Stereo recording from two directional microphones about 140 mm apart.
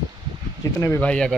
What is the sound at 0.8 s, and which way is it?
Speech, 15° left (ahead or behind).